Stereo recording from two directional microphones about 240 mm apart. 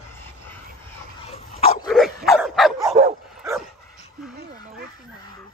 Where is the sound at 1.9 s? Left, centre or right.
Centre.